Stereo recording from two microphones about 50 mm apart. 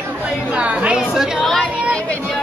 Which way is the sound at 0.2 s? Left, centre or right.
Right.